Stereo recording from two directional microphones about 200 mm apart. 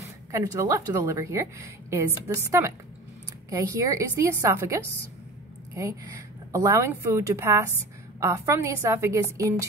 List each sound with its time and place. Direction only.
0.3 s a woman's voice: 15° right (ahead or behind)
3.4 s a woman's voice: 15° right (ahead or behind)